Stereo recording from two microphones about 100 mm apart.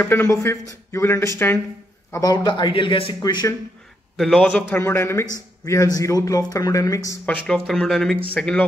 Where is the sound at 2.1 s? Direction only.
35° left (ahead or behind).